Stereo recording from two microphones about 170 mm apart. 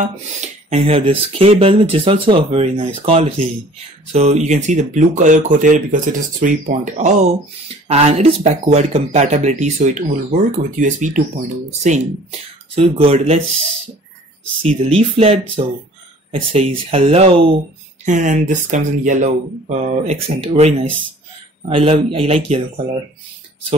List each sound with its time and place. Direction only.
0.0 s speech: 40° right (ahead or behind)
14.9 s speech: 35° right (ahead or behind)
18.0 s speech: 45° right (ahead or behind)